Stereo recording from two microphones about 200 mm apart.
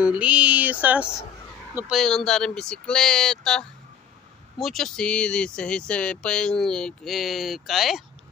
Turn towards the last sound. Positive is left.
turn(degrees=0)  # may be behind; listen again after turning